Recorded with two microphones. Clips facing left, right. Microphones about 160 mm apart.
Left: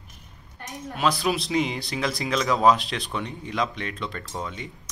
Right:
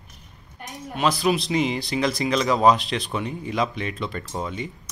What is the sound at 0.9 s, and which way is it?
Speech, centre (ahead or behind).